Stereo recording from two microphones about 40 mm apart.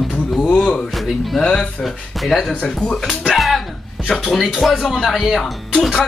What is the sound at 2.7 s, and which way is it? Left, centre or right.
Speech, centre.